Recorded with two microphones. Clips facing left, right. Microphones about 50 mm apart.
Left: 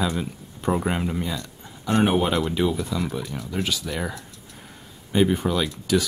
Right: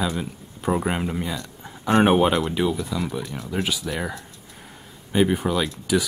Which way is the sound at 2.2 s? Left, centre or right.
Centre.